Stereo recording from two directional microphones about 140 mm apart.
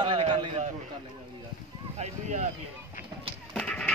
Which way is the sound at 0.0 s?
35° right (ahead or behind).